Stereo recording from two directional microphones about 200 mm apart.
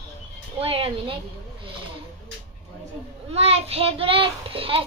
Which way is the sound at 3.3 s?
30° right (ahead or behind).